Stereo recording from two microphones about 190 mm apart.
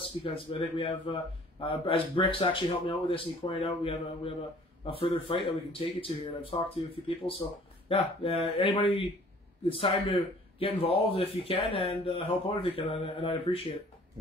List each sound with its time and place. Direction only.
0.0 s a man's voice: 30° left (ahead or behind)